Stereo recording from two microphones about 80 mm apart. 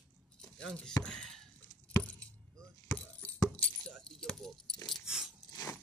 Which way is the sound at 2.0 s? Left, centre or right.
Centre.